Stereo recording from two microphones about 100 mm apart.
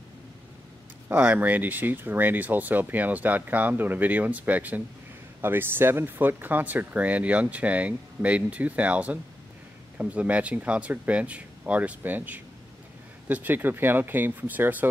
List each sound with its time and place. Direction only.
1.0 s speech: 15° right (ahead or behind)